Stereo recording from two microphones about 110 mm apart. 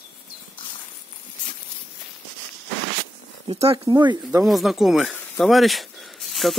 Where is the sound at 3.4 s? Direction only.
60° right (ahead or behind).